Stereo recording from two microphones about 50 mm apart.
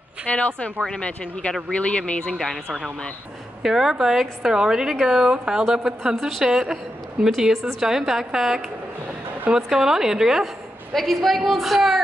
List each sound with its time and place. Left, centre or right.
0.3 s speech: left
2.3 s a woman's voice: centre
3.6 s a woman's voice: centre
10.9 s a woman's voice: centre